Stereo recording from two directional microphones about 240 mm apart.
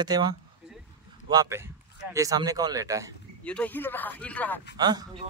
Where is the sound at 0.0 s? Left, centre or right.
Centre.